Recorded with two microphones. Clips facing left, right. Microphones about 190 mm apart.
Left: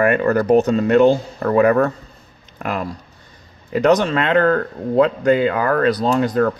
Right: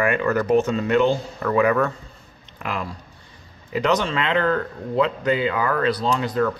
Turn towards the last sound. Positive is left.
turn(degrees=45)  # may be behind; listen again after turning